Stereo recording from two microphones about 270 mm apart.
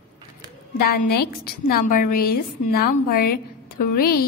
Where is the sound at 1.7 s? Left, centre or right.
Left.